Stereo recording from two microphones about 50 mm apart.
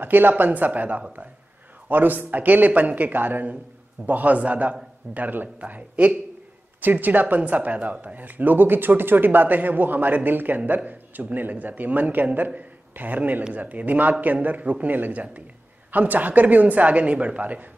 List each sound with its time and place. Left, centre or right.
0.0 s speech: right